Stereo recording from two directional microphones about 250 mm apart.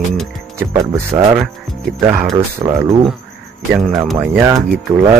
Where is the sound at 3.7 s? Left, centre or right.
Centre.